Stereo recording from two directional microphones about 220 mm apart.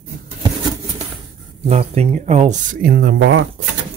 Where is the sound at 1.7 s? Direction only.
30° right (ahead or behind); by 3.4 s 60° right (ahead or behind).